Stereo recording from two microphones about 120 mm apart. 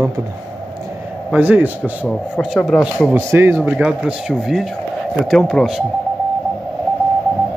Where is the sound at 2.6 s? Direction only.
Centre (ahead or behind).